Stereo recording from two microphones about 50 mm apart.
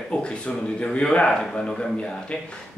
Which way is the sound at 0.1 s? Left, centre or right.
Left.